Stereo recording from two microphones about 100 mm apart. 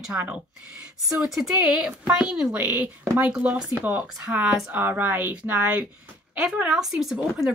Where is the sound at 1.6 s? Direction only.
10° right (ahead or behind).